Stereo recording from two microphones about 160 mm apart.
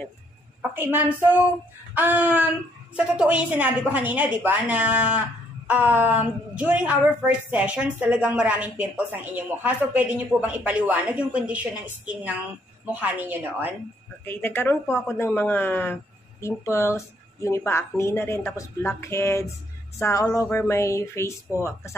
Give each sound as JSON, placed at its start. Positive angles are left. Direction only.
{"t": 0.6, "sound": "a woman's voice", "side_deg": -10}
{"t": 14.2, "sound": "speech", "side_deg": 15}